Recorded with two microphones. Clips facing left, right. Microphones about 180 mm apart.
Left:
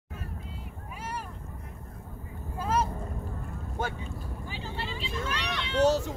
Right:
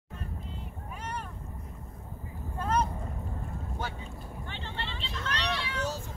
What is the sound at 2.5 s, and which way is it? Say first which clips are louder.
Vehicle: left 1 dB; 5° left (ahead or behind).